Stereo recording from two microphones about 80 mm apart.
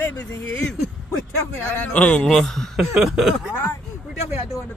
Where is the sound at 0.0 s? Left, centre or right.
Left.